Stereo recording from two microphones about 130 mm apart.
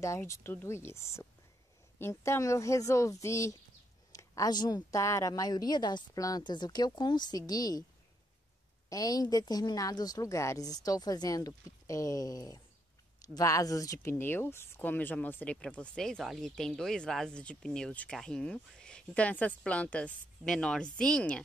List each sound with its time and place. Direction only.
0.0 s a woman's voice: 20° left (ahead or behind)
8.8 s a woman's voice: 25° left (ahead or behind); by 21.4 s 5° left (ahead or behind)